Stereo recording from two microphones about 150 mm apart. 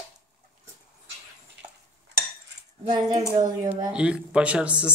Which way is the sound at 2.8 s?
30° right (ahead or behind).